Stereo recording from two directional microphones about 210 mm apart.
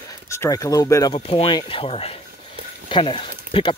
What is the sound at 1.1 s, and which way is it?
Speech, 25° left (ahead or behind).